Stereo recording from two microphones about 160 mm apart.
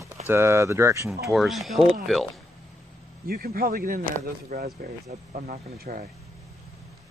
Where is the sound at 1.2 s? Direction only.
Centre (ahead or behind).